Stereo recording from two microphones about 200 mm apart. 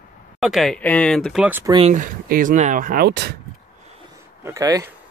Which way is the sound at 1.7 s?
35° right (ahead or behind).